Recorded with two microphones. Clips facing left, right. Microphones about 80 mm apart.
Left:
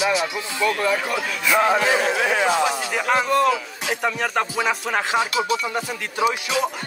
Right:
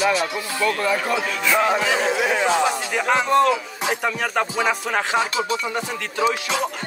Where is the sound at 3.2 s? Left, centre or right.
Right.